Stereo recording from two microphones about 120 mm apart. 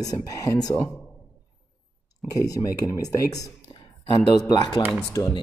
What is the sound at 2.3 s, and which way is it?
Speech, 30° left (ahead or behind).